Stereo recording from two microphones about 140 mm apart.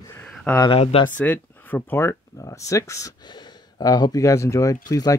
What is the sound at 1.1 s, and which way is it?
Speech, 10° left (ahead or behind).